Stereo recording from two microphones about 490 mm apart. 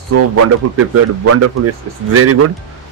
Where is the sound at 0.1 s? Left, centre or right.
Right.